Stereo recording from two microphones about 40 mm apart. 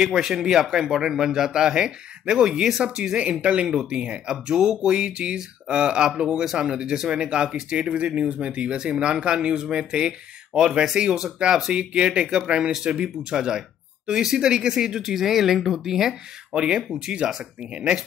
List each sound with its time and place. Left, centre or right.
0.0 s a man's voice: centre
2.8 s a man's voice: right
16.5 s speech: right